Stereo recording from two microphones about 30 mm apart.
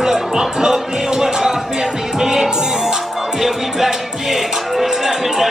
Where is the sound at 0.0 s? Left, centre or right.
Centre.